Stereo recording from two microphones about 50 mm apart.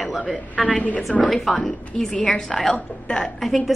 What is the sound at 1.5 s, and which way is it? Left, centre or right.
A woman's voice, centre.